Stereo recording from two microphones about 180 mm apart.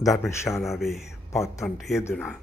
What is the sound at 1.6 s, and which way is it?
Speech, centre (ahead or behind).